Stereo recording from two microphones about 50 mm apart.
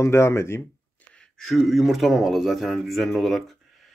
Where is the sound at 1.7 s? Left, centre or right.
Centre.